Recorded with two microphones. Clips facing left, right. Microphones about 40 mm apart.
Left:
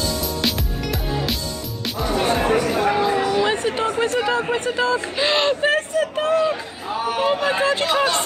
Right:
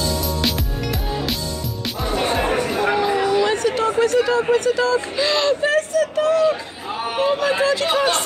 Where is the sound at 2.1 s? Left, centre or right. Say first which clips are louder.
Left 1 dB; centre.